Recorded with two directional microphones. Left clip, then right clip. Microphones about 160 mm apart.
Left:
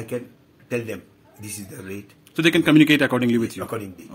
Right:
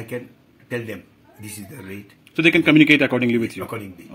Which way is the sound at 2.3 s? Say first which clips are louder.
Right 2 dB; 5° left (ahead or behind).